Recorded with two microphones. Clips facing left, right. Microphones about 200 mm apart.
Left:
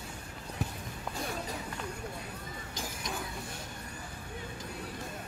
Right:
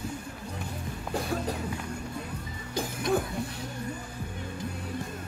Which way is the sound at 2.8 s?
60° right (ahead or behind).